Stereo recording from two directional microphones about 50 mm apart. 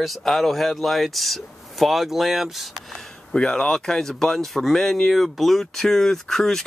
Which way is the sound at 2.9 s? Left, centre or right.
Centre.